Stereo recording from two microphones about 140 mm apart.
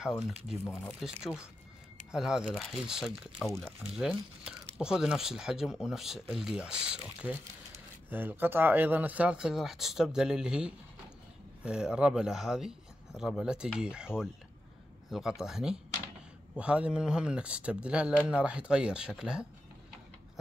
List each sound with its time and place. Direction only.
0.8 s speech: centre (ahead or behind)